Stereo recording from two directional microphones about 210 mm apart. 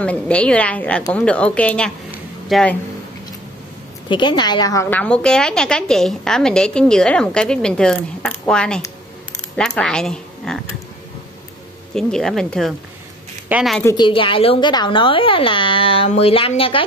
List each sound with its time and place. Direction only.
0.0 s a woman's voice: 5° left (ahead or behind)
2.0 s a sound: centre (ahead or behind)
4.1 s a woman's voice: 20° left (ahead or behind); by 10.6 s centre (ahead or behind)
11.9 s a woman's voice: 5° left (ahead or behind)
13.9 s speech: 25° left (ahead or behind)